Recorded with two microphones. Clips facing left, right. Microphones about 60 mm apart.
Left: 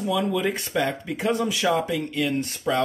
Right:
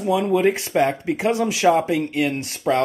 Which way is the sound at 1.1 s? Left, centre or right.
Right.